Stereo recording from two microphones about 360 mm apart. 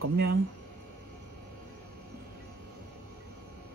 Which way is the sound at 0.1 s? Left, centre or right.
Right.